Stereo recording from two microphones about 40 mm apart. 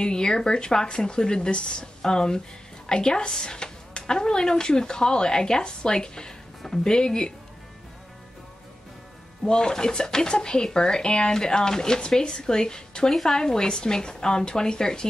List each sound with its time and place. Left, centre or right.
0.0 s speech: centre
9.4 s a woman's voice: centre